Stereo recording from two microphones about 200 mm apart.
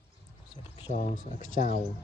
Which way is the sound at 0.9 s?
40° left (ahead or behind).